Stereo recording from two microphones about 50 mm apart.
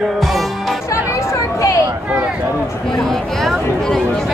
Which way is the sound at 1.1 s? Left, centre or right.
Left.